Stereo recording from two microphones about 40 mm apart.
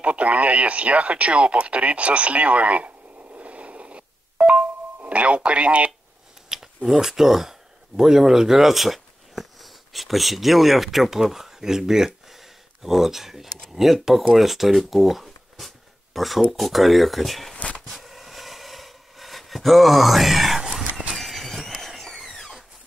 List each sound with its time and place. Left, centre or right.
0.0 s speech: right
3.3 s music: right
6.5 s scissors: centre
6.9 s speech: centre
12.3 s a sound: centre
14.0 s speech: centre
17.6 s a sound: left
17.8 s a sound: centre
21.2 s vehicle: centre